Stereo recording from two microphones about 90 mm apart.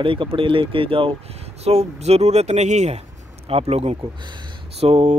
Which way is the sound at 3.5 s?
90° right.